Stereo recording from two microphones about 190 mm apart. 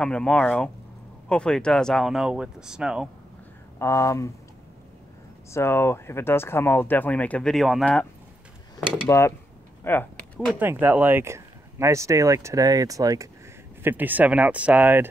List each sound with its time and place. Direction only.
0.0 s speech: 5° left (ahead or behind)
3.8 s speech: 15° left (ahead or behind)
5.5 s speech: 15° left (ahead or behind)
9.1 s speech: 15° left (ahead or behind)
10.6 s speech: 10° right (ahead or behind)